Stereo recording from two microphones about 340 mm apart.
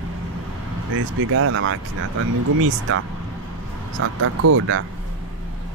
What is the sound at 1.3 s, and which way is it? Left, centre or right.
Speech, right.